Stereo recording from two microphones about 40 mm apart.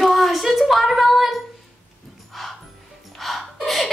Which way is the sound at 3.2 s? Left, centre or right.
Centre.